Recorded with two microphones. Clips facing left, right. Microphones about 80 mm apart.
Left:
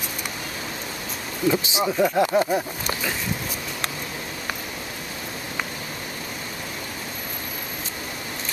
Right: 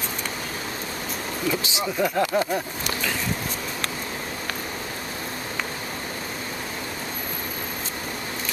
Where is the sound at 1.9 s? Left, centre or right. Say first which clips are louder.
Left 2 dB; centre.